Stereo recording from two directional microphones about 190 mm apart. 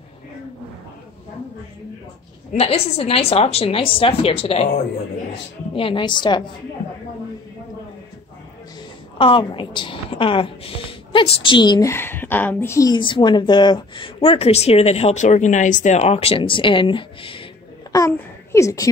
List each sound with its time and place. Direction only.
2.5 s a woman's voice: 35° left (ahead or behind)
5.8 s a woman's voice: 25° left (ahead or behind)
9.2 s a woman's voice: 25° left (ahead or behind)
17.9 s a woman's voice: 15° left (ahead or behind)